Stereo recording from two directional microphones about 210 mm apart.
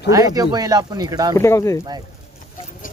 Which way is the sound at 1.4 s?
15° left (ahead or behind).